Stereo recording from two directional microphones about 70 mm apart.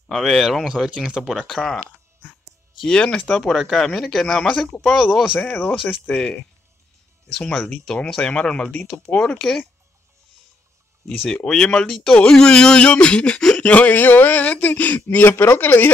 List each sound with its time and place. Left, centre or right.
0.1 s speech: centre
1.3 s speech: centre
6.0 s speech: centre
7.3 s speech: centre
11.2 s a man's voice: centre; by 15.9 s left